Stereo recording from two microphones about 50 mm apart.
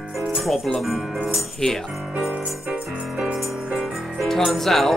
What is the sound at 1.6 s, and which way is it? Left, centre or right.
Speech, centre.